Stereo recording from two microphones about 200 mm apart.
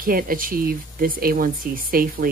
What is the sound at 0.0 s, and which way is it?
Speech, 45° right (ahead or behind).